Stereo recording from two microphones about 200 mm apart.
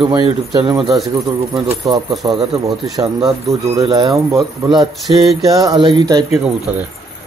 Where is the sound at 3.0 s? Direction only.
15° right (ahead or behind).